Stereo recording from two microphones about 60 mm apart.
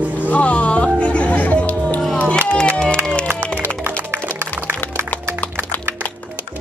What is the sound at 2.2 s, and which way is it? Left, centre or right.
Run, left.